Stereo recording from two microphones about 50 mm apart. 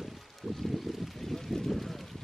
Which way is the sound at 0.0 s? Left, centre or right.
Centre.